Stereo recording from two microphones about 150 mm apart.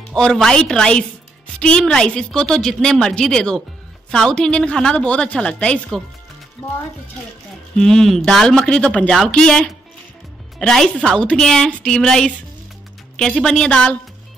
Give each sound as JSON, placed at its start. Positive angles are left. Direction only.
{"t": 0.1, "sound": "a woman's voice", "side_deg": 5}
{"t": 7.8, "sound": "a woman's voice", "side_deg": 5}
{"t": 13.4, "sound": "a woman's voice", "side_deg": 5}